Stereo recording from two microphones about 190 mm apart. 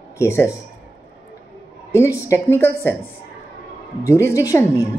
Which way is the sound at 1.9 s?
15° left (ahead or behind).